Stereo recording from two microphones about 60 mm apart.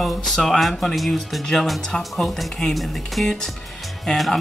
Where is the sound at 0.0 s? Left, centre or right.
Centre.